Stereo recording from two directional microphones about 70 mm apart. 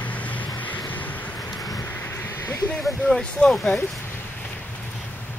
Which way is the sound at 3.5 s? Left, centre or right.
Centre.